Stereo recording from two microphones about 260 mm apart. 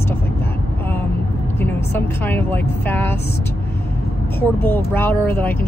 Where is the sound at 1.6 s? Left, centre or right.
Centre.